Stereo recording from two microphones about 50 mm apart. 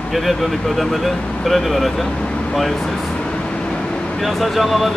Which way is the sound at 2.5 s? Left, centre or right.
Centre.